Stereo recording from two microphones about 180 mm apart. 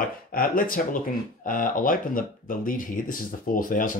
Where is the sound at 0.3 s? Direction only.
50° left (ahead or behind).